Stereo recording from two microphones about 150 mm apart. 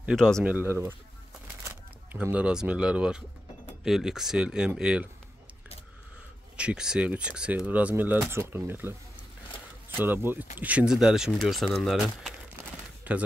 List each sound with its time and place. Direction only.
0.1 s speech: 5° left (ahead or behind)
0.5 s speech: 10° right (ahead or behind)
2.2 s speech: 10° right (ahead or behind)
6.5 s speech: 5° right (ahead or behind)